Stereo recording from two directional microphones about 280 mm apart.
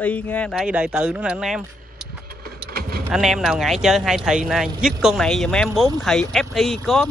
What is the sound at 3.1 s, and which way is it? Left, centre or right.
Speech, centre.